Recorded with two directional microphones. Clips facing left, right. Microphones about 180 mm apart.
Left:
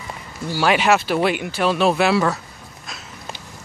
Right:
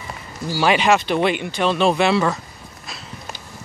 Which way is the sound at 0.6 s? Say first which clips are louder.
Even; 5° left (ahead or behind).